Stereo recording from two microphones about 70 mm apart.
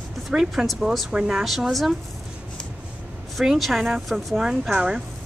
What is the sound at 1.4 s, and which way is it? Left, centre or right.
Speech, centre.